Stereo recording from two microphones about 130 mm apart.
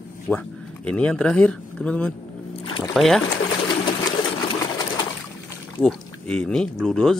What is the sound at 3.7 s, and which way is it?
Pigeon, 35° left (ahead or behind).